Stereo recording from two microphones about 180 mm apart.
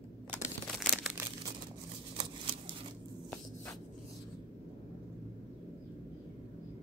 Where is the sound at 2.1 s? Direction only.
25° right (ahead or behind).